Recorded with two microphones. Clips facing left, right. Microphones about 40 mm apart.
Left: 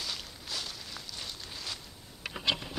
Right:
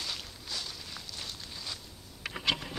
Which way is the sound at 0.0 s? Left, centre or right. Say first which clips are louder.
Even; centre.